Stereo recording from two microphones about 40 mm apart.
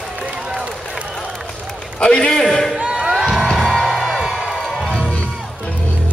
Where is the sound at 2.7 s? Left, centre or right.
Right.